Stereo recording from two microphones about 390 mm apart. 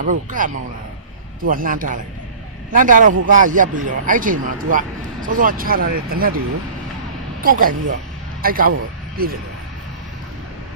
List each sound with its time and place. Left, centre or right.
0.0 s speech: centre
7.4 s speech: right